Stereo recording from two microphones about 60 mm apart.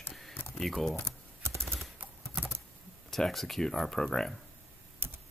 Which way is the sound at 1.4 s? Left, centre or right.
Right.